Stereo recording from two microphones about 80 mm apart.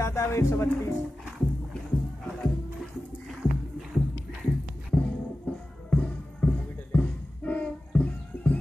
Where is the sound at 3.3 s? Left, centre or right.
Centre.